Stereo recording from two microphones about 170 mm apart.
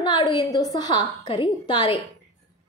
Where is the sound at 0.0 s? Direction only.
25° left (ahead or behind).